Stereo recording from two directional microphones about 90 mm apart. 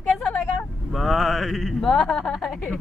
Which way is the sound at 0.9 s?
Centre (ahead or behind).